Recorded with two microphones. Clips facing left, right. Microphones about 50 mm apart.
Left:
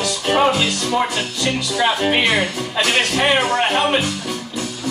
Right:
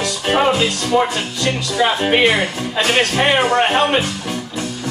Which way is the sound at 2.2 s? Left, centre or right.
Right.